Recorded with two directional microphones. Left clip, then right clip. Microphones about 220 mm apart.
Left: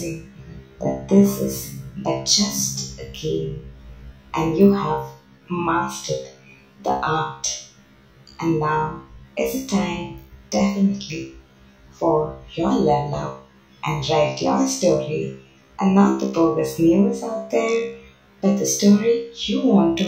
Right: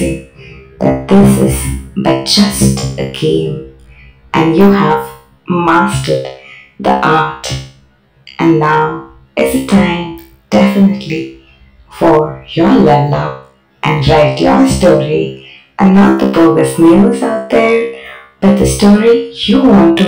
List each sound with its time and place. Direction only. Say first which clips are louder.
0.0 s music: right 13 dB; 35° right (ahead or behind)
2.0 s speech: right 9 dB; 35° right (ahead or behind)
8.4 s music: right 12 dB; 35° right (ahead or behind)